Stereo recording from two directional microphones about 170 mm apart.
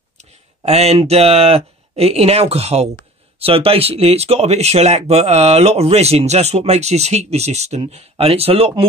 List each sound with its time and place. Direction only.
0.2 s speech: 40° right (ahead or behind)